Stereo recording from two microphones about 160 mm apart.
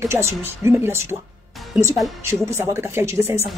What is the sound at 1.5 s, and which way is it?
Music, centre (ahead or behind).